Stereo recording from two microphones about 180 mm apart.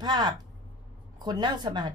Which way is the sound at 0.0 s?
25° right (ahead or behind).